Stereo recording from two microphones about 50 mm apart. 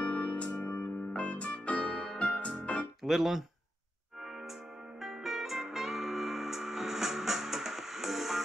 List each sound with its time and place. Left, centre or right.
0.0 s music: left
3.0 s speech: centre
5.0 s music: centre